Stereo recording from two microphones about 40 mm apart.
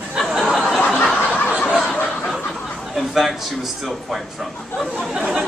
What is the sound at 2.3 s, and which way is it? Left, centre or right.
A man's voice, centre.